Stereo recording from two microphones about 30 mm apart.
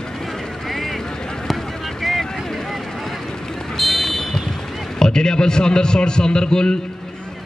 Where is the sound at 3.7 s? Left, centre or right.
Centre.